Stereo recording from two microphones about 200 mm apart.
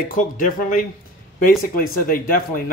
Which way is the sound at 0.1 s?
45° left (ahead or behind).